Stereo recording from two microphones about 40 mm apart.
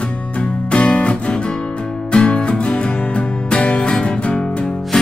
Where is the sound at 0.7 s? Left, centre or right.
Left.